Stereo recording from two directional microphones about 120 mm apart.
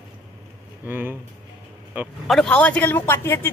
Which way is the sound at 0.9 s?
15° right (ahead or behind).